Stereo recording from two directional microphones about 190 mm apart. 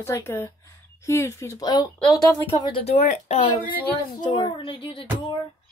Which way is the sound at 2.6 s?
30° left (ahead or behind).